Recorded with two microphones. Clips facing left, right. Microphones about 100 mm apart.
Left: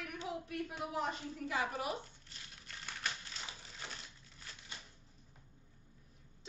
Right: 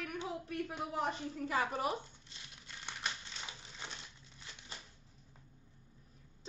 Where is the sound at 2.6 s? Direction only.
20° right (ahead or behind).